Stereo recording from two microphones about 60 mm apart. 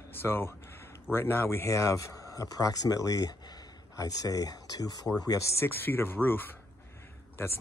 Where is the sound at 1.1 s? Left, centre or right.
Left.